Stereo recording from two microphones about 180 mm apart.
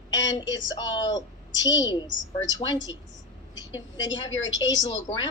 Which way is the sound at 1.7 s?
90° left.